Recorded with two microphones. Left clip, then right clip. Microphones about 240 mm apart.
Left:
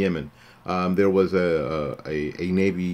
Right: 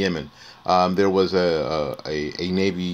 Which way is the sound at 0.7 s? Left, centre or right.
Centre.